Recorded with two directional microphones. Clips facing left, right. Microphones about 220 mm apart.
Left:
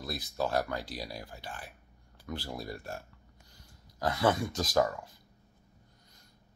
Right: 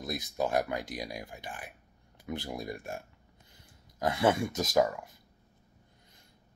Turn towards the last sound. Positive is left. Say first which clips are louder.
# right 1 dB
turn(degrees=-20)  # may be behind; listen again after turning